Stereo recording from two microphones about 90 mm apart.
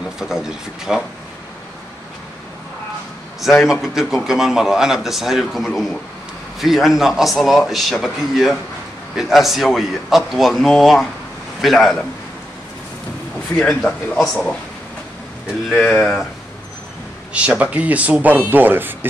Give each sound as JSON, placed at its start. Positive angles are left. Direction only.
{"t": 0.2, "sound": "speech", "side_deg": -5}
{"t": 4.1, "sound": "speech", "side_deg": -5}
{"t": 13.6, "sound": "speech", "side_deg": 10}
{"t": 15.7, "sound": "speech", "side_deg": 5}
{"t": 17.3, "sound": "speech", "side_deg": -15}